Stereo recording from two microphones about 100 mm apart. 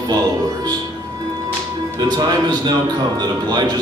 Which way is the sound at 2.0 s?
45° right (ahead or behind).